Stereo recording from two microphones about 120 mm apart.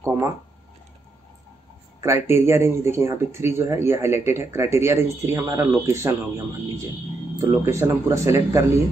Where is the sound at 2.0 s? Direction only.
20° right (ahead or behind).